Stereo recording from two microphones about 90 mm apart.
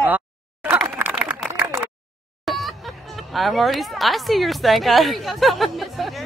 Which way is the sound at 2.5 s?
Centre (ahead or behind).